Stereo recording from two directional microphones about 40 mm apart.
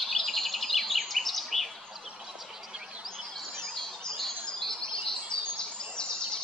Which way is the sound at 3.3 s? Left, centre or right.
Centre.